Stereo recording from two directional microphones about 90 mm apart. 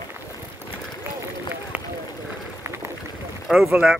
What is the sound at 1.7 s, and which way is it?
Run, 20° right (ahead or behind).